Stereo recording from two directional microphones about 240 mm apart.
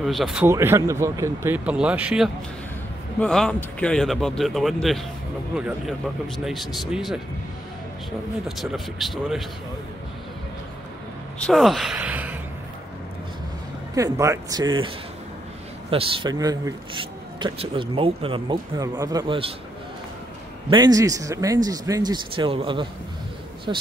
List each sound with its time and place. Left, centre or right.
0.0 s speech: centre
8.5 s speech: centre
11.4 s speech: centre
13.9 s speech: centre
15.9 s speech: right
20.7 s speech: centre